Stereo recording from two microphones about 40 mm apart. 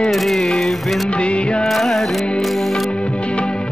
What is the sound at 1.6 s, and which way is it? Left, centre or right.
Music, centre.